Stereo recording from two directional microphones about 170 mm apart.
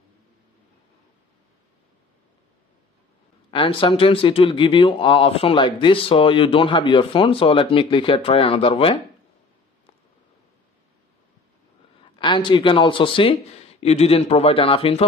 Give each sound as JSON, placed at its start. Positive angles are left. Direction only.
{"t": 3.5, "sound": "speech", "side_deg": 30}
{"t": 12.2, "sound": "speech", "side_deg": 30}